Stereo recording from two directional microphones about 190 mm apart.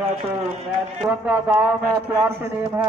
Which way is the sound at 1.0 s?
5° right (ahead or behind).